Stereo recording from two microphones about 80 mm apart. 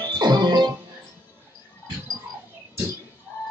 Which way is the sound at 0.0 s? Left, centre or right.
Right.